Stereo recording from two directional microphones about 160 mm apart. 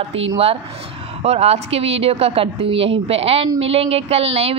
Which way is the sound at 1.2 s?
40° right (ahead or behind).